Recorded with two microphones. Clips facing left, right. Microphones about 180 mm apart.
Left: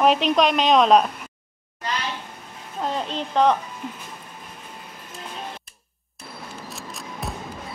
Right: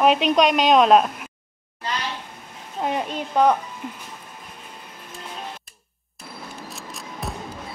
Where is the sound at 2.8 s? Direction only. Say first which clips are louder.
Right 1 dB; 10° right (ahead or behind).